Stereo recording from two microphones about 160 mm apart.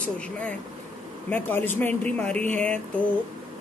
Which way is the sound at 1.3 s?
10° left (ahead or behind).